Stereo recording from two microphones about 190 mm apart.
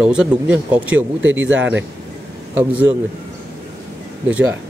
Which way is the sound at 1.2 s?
90° right.